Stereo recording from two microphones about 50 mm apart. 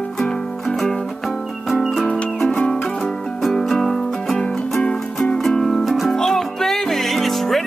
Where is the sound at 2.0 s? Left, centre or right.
Centre.